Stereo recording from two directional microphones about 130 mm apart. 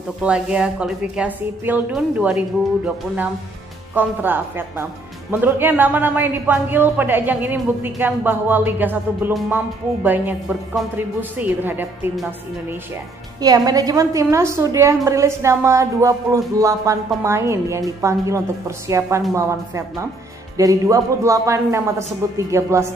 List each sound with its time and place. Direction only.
0.2 s a man's voice: 5° right (ahead or behind)
13.4 s a woman's voice: 30° right (ahead or behind)